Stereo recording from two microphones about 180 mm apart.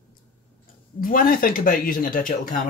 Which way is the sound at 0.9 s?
50° left (ahead or behind).